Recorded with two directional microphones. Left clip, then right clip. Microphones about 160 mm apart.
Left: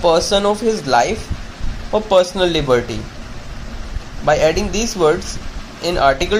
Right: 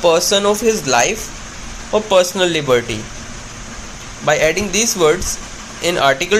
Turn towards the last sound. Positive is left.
turn(degrees=0)  # may be behind; listen again after turning